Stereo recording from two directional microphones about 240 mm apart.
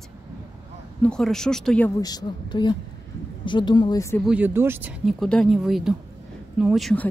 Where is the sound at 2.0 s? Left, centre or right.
Centre.